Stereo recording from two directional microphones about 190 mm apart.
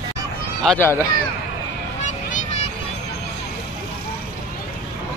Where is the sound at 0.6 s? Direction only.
5° left (ahead or behind).